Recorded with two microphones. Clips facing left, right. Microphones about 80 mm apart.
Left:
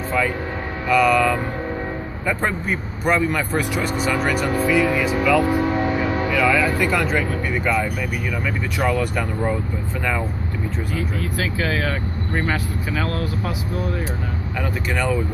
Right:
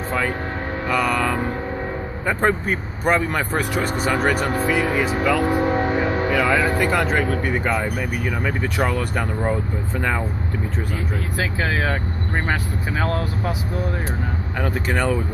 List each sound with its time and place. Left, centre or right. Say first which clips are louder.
0.8 s speech: left 5 dB; right
11.3 s speech: right 1 dB; right